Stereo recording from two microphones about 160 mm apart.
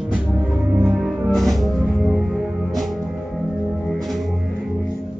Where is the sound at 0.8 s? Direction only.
5° right (ahead or behind).